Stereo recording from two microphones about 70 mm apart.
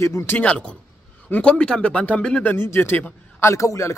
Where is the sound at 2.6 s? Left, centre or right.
Left.